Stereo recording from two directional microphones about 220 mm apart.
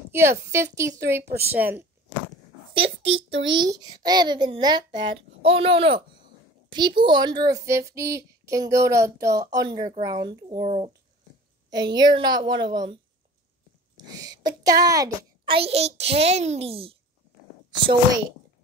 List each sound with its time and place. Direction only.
0.1 s speech: 10° right (ahead or behind)
2.7 s a sound: 25° right (ahead or behind)
3.3 s a child's voice: 60° right (ahead or behind)
3.8 s a child's voice: 20° right (ahead or behind)
7.0 s a child's voice: 20° right (ahead or behind)